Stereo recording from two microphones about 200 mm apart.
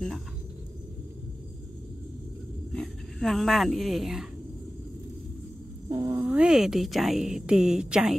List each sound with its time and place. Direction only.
2.7 s speech: centre (ahead or behind)
5.9 s speech: 20° right (ahead or behind)
6.2 s speech: 5° right (ahead or behind)